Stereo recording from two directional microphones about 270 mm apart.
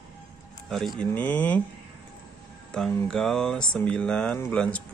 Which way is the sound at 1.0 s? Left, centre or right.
Centre.